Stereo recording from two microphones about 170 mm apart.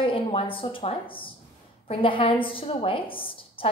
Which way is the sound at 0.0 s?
35° left (ahead or behind).